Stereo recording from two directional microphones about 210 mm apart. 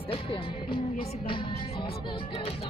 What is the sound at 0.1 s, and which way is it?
Music, 25° left (ahead or behind).